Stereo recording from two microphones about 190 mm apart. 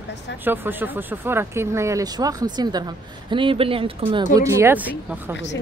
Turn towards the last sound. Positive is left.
turn(degrees=-10)  # may be behind; listen again after turning